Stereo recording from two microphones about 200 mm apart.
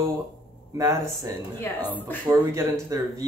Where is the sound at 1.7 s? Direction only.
10° left (ahead or behind).